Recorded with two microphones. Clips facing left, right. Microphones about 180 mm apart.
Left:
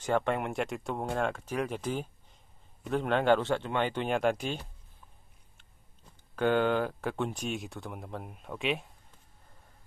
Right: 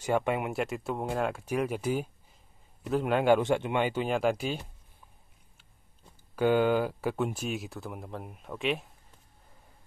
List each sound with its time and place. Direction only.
0.0 s speech: 10° right (ahead or behind)
6.3 s speech: 10° right (ahead or behind)